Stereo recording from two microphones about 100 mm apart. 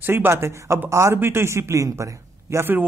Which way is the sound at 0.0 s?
20° right (ahead or behind).